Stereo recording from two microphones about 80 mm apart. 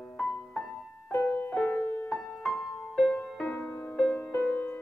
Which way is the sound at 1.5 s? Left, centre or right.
Centre.